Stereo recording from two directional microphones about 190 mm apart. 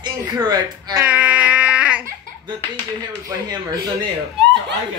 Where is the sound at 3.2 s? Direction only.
20° right (ahead or behind).